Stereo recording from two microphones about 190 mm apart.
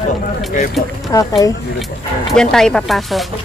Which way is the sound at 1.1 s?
20° left (ahead or behind).